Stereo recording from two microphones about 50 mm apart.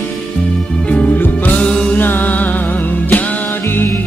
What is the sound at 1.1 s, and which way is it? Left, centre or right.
Music, left.